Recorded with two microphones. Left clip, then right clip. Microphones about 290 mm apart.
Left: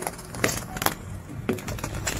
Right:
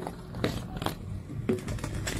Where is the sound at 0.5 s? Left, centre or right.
Left.